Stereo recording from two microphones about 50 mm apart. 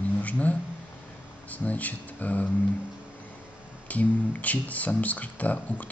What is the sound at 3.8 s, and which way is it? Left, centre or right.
Speech, left.